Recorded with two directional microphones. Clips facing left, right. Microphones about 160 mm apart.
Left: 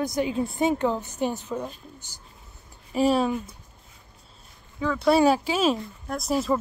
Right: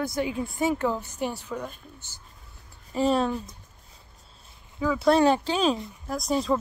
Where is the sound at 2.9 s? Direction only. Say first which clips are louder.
Left 2 dB; 10° left (ahead or behind).